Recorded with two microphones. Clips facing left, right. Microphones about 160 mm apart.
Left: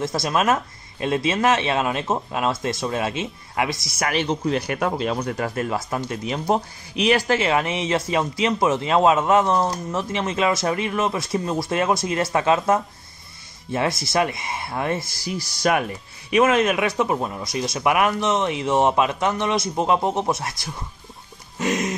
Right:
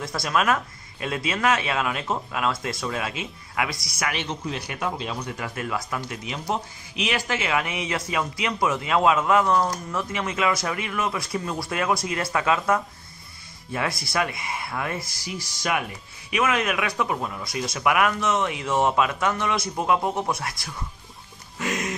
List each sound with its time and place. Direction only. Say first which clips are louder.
0.0 s speech: left 3 dB; 25° left (ahead or behind)
4.5 s speech: left 7 dB; 50° left (ahead or behind)
5.5 s speech: left 4 dB; 35° left (ahead or behind)
21.5 s speech: left 5 dB; 20° left (ahead or behind)